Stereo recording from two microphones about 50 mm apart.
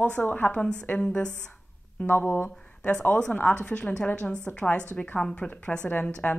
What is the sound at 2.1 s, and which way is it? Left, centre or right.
Speech, left.